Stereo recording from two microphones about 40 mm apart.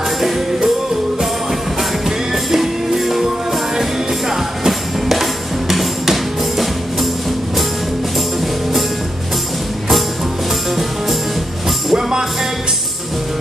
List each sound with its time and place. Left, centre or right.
2.0 s music: centre
4.3 s music: centre
11.9 s music: centre